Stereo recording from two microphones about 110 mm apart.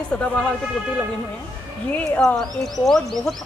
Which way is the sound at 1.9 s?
10° left (ahead or behind).